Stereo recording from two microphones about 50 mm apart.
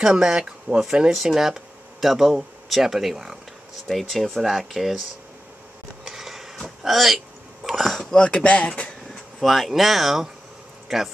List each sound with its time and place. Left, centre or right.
0.0 s speech: centre
6.0 s a sound: centre
6.8 s speech: centre
8.0 s speech: centre
8.5 s speech: left
9.1 s speech: centre